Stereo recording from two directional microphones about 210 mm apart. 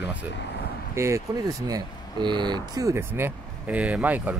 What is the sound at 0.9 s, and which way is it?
Speech, 15° right (ahead or behind).